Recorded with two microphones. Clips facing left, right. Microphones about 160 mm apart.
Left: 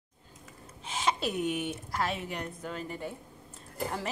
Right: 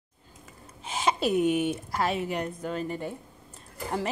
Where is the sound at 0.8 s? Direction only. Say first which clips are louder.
Right 4 dB; 10° right (ahead or behind).